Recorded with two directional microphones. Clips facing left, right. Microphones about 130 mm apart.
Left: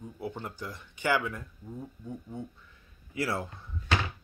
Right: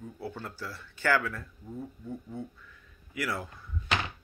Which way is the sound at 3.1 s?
30° left (ahead or behind).